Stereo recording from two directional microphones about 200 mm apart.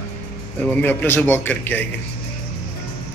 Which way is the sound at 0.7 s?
10° left (ahead or behind).